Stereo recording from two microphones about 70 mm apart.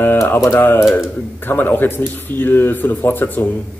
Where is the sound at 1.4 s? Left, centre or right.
Left.